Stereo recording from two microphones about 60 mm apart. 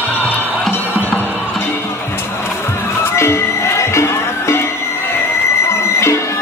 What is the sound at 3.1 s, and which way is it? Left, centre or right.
Music, left.